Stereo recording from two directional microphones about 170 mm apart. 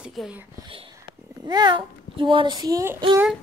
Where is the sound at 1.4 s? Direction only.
25° right (ahead or behind).